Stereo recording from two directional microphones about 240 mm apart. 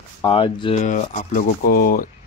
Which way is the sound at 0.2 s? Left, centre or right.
Centre.